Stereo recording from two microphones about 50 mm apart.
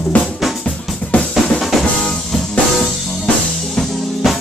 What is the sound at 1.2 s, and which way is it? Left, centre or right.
Drum, centre.